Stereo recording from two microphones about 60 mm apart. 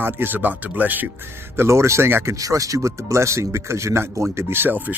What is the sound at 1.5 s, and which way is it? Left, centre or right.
Speech, right.